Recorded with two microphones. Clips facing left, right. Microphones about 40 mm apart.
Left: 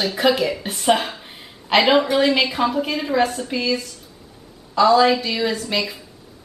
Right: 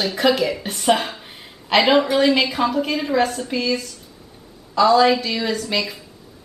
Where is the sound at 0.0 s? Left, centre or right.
Centre.